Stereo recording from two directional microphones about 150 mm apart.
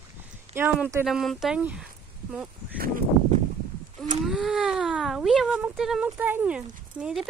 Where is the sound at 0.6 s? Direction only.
15° right (ahead or behind).